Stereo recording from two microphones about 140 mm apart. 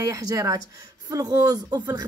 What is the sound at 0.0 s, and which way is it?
Speech, 25° right (ahead or behind).